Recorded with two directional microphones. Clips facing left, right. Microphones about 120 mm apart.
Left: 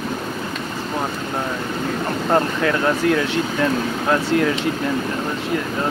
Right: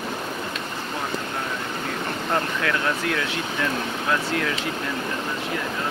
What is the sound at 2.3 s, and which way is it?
Speech, 35° left (ahead or behind).